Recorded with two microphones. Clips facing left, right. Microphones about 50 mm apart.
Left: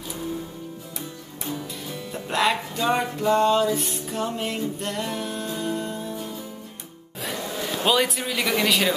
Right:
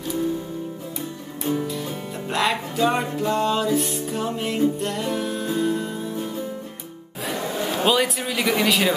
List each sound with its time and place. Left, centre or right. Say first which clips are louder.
1.5 s music: right 8 dB; right
2.2 s music: even; centre
7.3 s a sound: right 4 dB; right
7.8 s music: right 1 dB; centre